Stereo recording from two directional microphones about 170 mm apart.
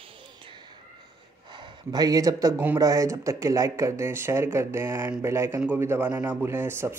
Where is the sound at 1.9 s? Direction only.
20° right (ahead or behind).